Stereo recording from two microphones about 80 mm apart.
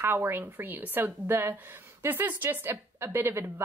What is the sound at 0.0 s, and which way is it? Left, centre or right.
A woman's voice, right.